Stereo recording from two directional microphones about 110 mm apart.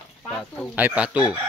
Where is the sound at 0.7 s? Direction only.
10° right (ahead or behind).